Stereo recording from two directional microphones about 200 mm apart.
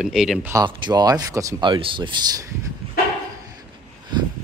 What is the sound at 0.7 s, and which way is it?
Speech, 20° right (ahead or behind).